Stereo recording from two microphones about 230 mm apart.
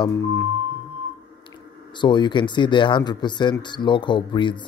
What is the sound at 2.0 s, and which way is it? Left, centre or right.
Speech, centre.